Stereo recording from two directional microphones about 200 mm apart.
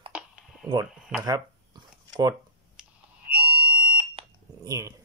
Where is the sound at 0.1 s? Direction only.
5° right (ahead or behind).